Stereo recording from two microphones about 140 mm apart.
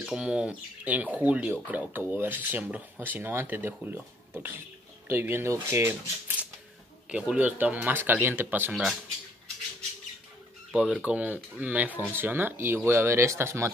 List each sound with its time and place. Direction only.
0.0 s speech: 5° right (ahead or behind)
10.7 s speech: 10° right (ahead or behind)